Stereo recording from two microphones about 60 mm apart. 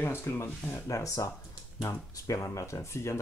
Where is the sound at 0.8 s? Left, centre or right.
Left.